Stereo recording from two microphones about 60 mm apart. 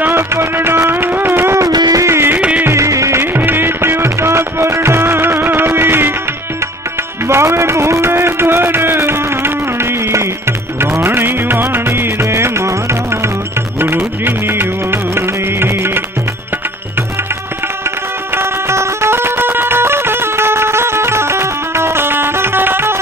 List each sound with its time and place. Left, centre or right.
0.3 s music: right
1.6 s music: right
2.3 s music: right
2.7 s music: right
3.2 s music: right
7.2 s a sound: right
10.8 s music: right
13.7 s music: right
18.3 s music: right